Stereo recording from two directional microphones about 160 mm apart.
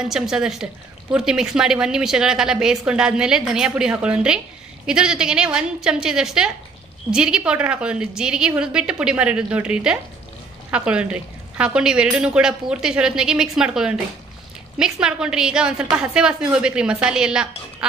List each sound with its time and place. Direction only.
0.0 s a woman's voice: 5° right (ahead or behind)